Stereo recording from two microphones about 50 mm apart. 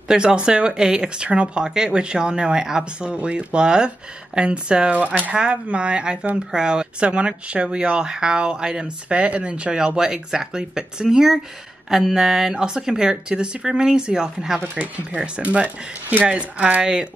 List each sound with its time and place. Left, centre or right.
0.1 s speech: centre
4.9 s speech: right
13.6 s speech: centre
15.4 s speech: right